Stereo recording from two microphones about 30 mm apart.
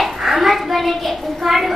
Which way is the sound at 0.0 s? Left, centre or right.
Centre.